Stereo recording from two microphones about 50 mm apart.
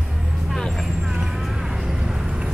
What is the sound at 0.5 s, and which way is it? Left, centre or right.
Vehicle, centre.